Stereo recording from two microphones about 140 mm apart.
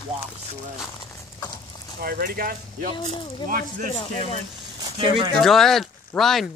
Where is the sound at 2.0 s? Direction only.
90° right.